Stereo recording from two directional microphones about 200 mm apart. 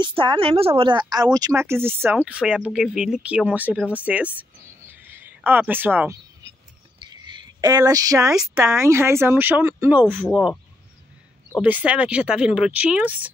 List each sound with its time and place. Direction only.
0.2 s speech: 25° right (ahead or behind); by 6.1 s 10° right (ahead or behind)
7.0 s a sound: 20° right (ahead or behind)
8.4 s speech: 10° right (ahead or behind)
11.5 s speech: 5° right (ahead or behind)